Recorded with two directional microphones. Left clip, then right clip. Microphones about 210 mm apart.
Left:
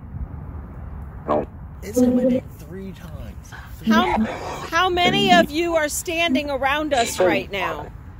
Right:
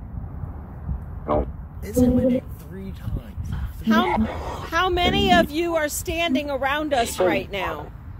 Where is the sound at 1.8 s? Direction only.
25° left (ahead or behind).